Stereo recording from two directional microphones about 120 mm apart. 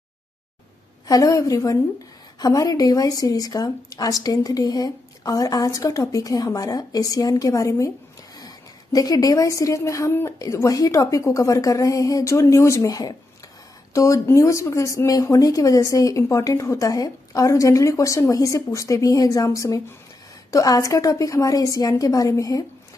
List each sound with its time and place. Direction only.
1.0 s a woman's voice: 30° left (ahead or behind)